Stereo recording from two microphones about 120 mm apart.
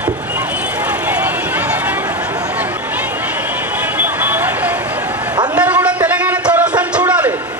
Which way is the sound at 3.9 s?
15° right (ahead or behind).